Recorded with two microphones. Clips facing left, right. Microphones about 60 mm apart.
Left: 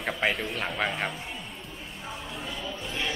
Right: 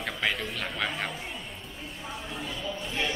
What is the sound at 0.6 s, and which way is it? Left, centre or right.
Speech, left.